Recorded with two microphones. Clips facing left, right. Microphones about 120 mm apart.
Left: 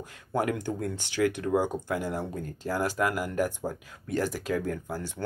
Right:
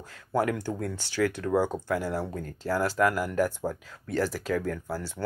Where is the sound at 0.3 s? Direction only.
20° left (ahead or behind).